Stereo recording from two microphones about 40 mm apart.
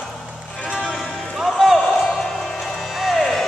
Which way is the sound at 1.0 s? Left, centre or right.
Centre.